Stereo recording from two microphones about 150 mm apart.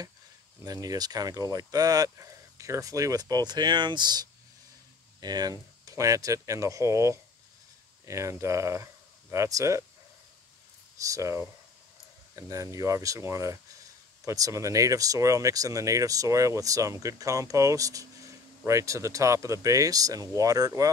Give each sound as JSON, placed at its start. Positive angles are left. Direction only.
{"t": 0.7, "sound": "speech", "side_deg": -25}
{"t": 11.0, "sound": "speech", "side_deg": -20}